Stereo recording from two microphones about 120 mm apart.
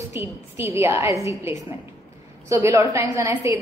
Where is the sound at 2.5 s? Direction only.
25° right (ahead or behind).